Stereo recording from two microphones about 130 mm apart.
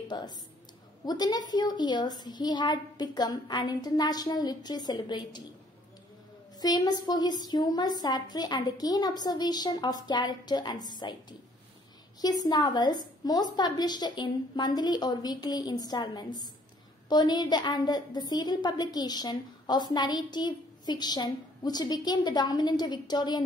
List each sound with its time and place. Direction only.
0.1 s a woman's voice: 30° left (ahead or behind)
6.6 s a woman's voice: 30° left (ahead or behind)